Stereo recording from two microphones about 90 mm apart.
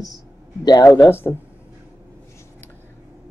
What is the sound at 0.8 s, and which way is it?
Throat clearing, 20° left (ahead or behind).